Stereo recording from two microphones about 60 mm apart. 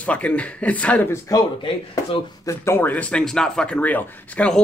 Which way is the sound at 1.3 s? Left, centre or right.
Left.